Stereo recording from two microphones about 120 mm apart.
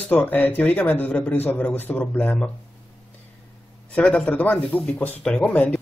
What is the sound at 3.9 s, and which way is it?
Speech, 10° left (ahead or behind).